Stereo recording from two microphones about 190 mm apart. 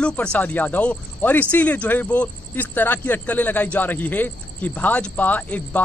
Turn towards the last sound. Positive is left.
turn(degrees=10)  # may be behind; listen again after turning